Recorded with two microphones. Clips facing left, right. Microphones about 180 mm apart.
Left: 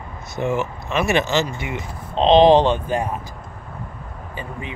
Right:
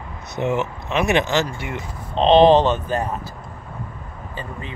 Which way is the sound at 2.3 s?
15° left (ahead or behind).